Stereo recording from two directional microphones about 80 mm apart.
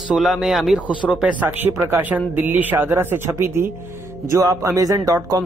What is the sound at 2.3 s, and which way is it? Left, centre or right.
Speech, right.